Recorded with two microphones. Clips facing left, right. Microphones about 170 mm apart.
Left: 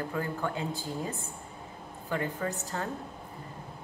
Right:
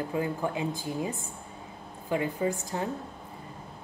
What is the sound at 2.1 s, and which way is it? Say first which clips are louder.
Speech: right 4 dB; 15° right (ahead or behind).